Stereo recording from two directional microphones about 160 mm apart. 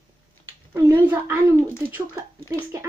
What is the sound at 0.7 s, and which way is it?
Speech, 15° right (ahead or behind).